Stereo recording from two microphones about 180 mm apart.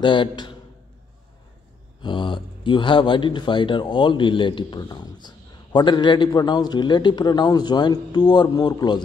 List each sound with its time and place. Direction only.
0.0 s speech: 25° left (ahead or behind)
2.0 s speech: 25° left (ahead or behind)